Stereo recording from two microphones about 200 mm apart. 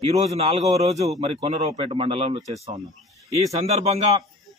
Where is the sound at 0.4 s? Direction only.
30° right (ahead or behind).